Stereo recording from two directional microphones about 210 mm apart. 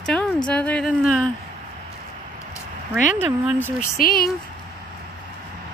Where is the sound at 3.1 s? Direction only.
10° right (ahead or behind).